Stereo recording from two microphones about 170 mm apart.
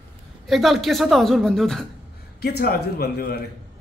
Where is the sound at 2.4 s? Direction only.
65° left (ahead or behind).